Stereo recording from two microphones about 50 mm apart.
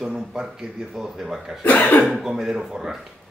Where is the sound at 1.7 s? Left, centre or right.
Left.